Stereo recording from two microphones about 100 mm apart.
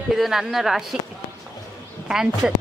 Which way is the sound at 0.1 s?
5° right (ahead or behind).